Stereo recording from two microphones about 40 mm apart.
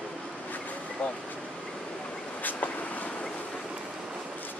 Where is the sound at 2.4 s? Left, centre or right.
Left.